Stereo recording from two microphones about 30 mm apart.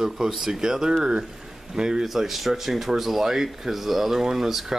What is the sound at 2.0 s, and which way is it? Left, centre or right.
Speech, centre.